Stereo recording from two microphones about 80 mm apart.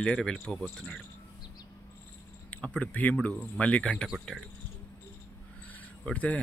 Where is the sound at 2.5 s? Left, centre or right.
Centre.